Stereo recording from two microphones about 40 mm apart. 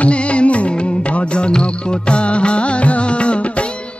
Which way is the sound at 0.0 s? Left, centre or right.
Left.